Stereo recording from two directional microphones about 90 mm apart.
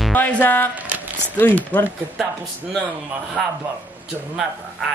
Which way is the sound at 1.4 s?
20° left (ahead or behind).